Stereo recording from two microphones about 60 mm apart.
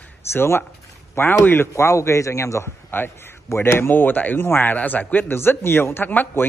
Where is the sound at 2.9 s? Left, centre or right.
Left.